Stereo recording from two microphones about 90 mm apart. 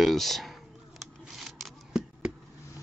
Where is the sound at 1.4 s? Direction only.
5° right (ahead or behind).